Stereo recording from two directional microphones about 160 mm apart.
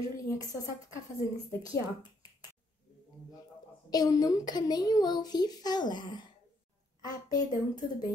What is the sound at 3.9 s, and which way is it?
A child's voice, 25° left (ahead or behind).